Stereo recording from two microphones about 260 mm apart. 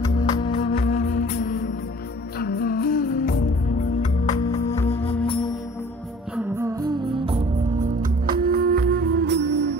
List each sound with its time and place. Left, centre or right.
0.0 s music: centre
6.3 s music: centre; by 9.8 s right